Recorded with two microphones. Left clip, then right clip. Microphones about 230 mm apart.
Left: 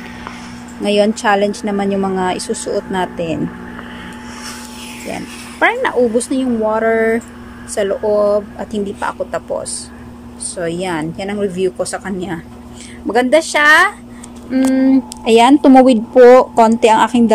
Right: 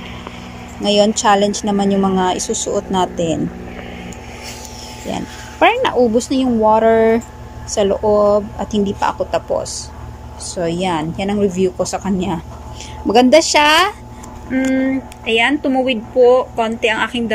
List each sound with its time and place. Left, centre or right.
0.8 s speech: centre
5.0 s speech: centre
14.5 s speech: centre